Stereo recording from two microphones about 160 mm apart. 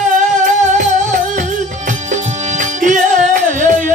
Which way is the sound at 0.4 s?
50° right (ahead or behind).